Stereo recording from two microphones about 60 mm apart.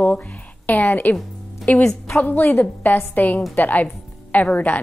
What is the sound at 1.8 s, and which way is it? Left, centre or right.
Speech, centre.